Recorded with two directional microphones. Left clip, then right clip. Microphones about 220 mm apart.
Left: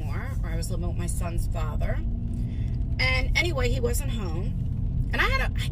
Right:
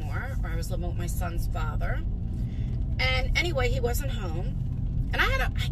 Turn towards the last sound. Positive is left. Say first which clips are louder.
# left 1 dB
turn(degrees=20)  # may be behind; listen again after turning